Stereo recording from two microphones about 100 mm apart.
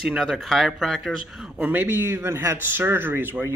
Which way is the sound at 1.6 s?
20° right (ahead or behind).